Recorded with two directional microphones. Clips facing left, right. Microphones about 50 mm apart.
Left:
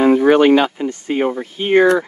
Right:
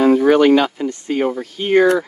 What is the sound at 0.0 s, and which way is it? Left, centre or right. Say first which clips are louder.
Speech: left 1 dB; left.